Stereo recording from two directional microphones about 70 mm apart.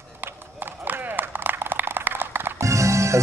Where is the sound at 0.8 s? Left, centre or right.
Right.